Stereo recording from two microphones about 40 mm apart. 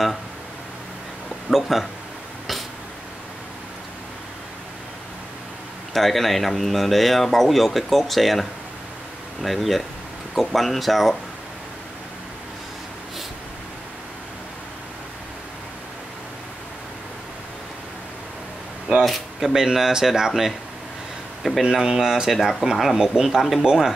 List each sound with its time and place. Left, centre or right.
1.5 s speech: centre
5.9 s speech: centre
19.0 s speech: centre
19.5 s speech: centre
21.4 s a man's voice: centre
21.6 s speech: centre
23.2 s speech: right